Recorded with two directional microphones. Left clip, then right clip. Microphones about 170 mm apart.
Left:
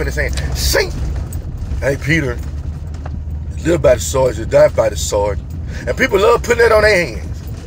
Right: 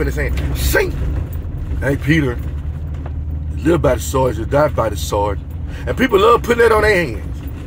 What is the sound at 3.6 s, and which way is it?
Speech, 15° right (ahead or behind).